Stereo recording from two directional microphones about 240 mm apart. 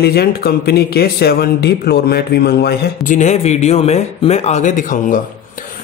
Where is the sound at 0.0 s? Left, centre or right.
Left.